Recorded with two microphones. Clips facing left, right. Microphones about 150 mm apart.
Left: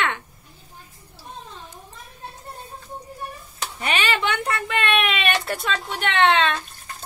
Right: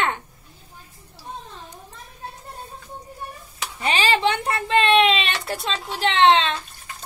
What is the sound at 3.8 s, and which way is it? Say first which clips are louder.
Whimper: right 3 dB; 30° right (ahead or behind).